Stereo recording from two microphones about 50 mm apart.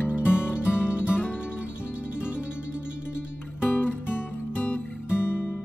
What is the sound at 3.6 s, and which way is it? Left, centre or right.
Music, left.